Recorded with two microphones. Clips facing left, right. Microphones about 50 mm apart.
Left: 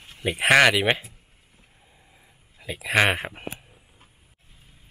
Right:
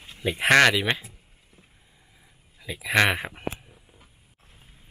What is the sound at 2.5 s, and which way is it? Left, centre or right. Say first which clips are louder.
Speech: even; centre.